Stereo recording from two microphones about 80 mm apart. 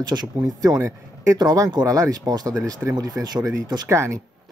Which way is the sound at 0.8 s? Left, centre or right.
Right.